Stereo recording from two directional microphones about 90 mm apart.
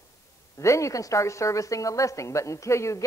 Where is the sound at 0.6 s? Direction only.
35° left (ahead or behind).